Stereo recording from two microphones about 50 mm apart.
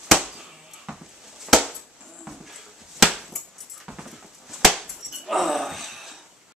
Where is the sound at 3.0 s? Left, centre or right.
Centre.